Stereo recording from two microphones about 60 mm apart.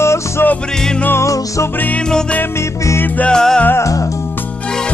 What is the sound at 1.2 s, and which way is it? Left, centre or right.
Music, left.